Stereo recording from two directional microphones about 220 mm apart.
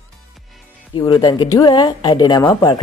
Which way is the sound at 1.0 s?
20° left (ahead or behind).